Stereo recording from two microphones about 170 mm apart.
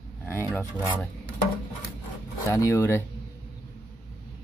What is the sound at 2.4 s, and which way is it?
Speech, 20° left (ahead or behind).